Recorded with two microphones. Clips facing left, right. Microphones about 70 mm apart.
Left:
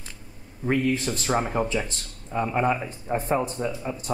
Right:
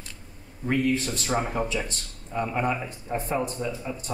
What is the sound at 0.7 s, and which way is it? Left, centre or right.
Speech, left.